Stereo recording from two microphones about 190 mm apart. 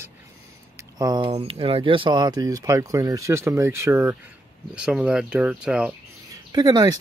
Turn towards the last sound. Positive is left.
turn(degrees=-20)  # may be behind; listen again after turning